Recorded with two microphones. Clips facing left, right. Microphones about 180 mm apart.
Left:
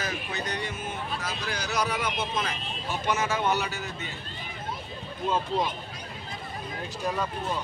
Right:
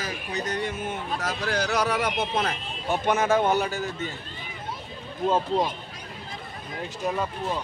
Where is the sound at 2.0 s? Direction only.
65° right (ahead or behind); by 4.1 s 50° right (ahead or behind).